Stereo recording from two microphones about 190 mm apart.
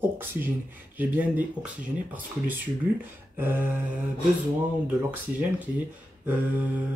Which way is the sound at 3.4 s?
10° right (ahead or behind).